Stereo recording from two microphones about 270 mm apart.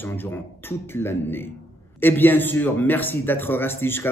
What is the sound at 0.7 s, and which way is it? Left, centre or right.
A man's voice, centre.